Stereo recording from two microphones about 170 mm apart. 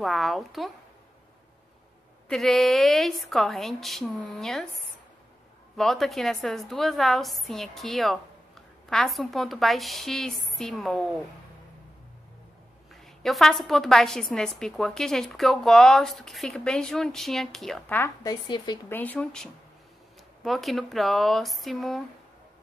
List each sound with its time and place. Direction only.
0.0 s a woman's voice: centre (ahead or behind)
2.2 s a woman's voice: centre (ahead or behind)
5.8 s a woman's voice: centre (ahead or behind)
12.9 s a woman's voice: centre (ahead or behind)